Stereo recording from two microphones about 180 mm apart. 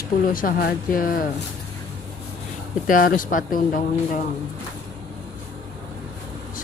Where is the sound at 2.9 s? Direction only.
50° left (ahead or behind).